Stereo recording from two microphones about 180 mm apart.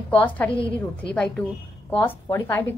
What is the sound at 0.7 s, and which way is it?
A woman's voice, 5° left (ahead or behind).